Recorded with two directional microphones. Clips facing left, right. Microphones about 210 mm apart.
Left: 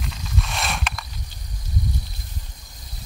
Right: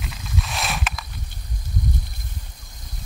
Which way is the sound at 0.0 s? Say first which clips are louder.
Even; centre (ahead or behind).